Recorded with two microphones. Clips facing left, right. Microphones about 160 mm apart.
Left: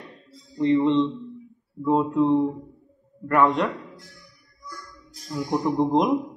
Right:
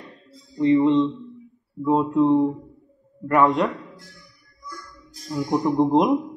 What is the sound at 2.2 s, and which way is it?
Speech, 20° right (ahead or behind).